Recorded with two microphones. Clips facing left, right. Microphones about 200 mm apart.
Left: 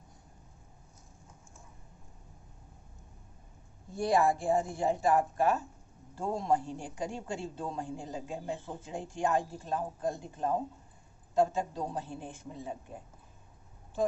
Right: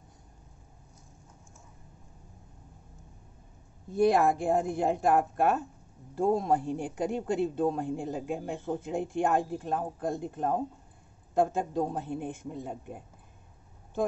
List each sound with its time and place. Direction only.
4.0 s speech: 60° right (ahead or behind)